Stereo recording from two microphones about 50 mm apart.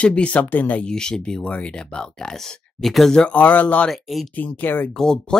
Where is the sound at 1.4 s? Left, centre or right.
Left; by 3.1 s centre.